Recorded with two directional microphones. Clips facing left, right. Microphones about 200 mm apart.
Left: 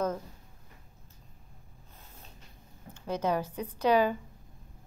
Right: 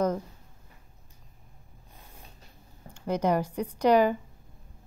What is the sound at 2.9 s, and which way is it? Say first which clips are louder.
A woman's voice: right 4 dB; 15° right (ahead or behind).